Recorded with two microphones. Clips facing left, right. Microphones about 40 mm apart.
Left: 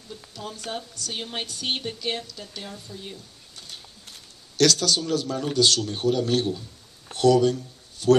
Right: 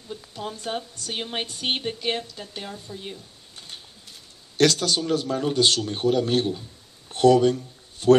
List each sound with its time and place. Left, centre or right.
0.1 s a sound: right
0.7 s a woman's voice: right
4.6 s a woman's voice: right